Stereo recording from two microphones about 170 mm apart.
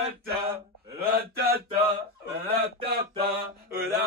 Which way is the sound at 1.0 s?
65° right (ahead or behind).